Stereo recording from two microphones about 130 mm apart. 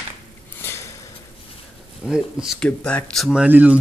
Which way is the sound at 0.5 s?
20° left (ahead or behind).